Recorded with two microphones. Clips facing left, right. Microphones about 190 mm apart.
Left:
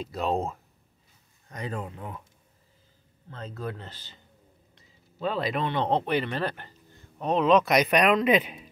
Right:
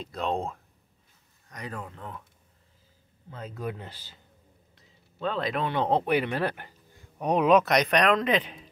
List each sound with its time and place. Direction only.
0.0 s speech: 5° left (ahead or behind)
1.5 s speech: 25° left (ahead or behind)
3.3 s speech: 10° right (ahead or behind)
4.7 s speech: 5° left (ahead or behind); by 7.6 s 10° right (ahead or behind)
7.6 s speech: 5° left (ahead or behind)